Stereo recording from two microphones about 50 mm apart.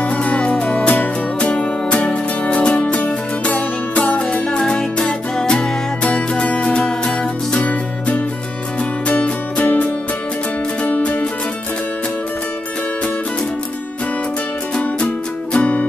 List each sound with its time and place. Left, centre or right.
0.0 s music: left
15.5 s music: left